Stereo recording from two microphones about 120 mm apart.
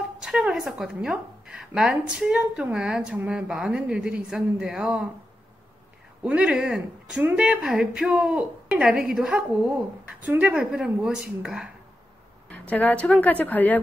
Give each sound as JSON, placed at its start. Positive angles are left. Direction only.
{"t": 0.2, "sound": "a woman's voice", "side_deg": -5}
{"t": 6.2, "sound": "a woman's voice", "side_deg": -5}
{"t": 12.4, "sound": "a woman's voice", "side_deg": 10}